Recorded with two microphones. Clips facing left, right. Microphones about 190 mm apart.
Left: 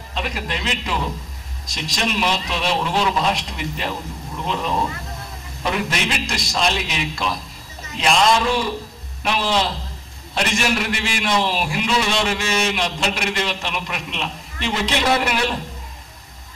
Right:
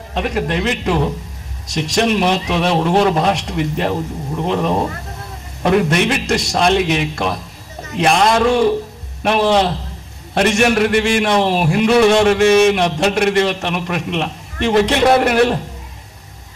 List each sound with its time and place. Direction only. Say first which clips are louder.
0.1 s a man's voice: right 8 dB; 60° right (ahead or behind)